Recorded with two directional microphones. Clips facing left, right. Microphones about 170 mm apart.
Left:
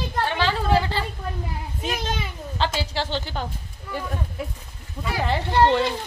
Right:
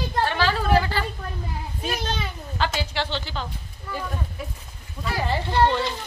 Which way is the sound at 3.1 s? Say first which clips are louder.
Left 2 dB; 50° left (ahead or behind).